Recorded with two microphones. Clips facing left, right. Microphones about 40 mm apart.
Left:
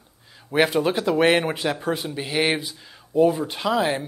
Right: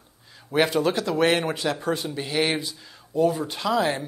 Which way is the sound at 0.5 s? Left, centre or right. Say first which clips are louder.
Left 1 dB; centre.